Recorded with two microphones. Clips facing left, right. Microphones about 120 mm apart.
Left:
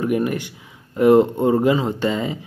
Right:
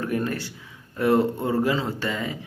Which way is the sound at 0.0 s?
15° left (ahead or behind).